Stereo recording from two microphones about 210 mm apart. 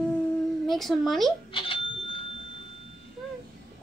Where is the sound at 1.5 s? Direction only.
25° left (ahead or behind).